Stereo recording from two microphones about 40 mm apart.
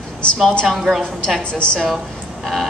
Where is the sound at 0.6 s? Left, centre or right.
Centre.